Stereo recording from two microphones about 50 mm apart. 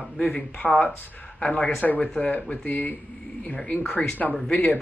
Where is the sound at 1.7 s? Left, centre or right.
Left.